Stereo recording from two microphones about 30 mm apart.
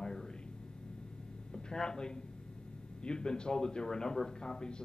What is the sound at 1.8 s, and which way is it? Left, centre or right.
A man's voice, left.